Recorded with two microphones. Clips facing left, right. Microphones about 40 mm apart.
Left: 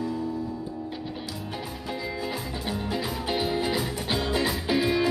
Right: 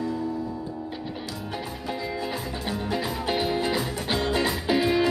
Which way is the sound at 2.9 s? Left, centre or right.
Centre.